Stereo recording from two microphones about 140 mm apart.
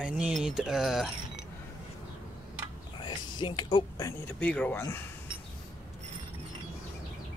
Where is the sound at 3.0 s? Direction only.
35° left (ahead or behind).